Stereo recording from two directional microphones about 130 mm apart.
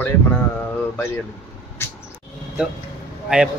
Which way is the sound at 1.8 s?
20° left (ahead or behind).